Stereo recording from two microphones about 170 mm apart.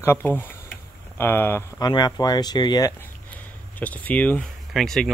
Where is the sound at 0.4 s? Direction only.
10° left (ahead or behind).